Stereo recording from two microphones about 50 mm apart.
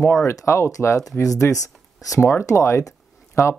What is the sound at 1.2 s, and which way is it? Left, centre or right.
Speech, left.